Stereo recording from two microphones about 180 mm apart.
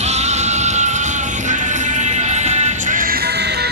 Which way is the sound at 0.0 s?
40° right (ahead or behind).